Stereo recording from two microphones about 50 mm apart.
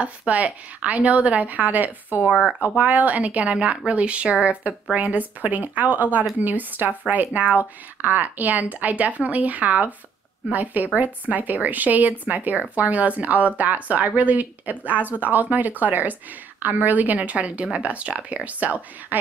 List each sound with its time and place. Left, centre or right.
0.0 s a woman's voice: right